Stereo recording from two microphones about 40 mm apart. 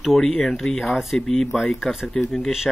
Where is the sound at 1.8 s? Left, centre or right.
Centre.